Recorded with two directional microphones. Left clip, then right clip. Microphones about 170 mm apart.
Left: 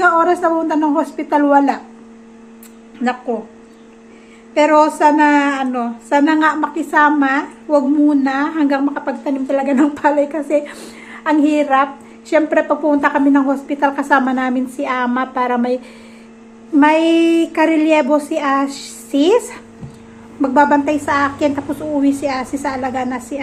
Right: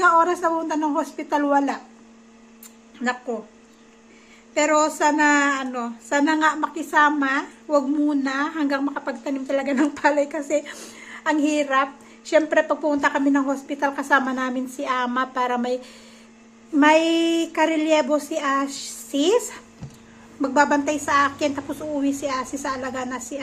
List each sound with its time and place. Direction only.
0.0 s a woman's voice: centre (ahead or behind)
3.0 s speech: 5° right (ahead or behind)
4.6 s a woman's voice: 5° right (ahead or behind)